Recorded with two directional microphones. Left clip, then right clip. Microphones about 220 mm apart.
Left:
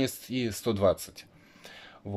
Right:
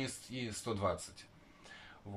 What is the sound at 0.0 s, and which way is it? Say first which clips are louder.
Speech: left 11 dB; 50° left (ahead or behind).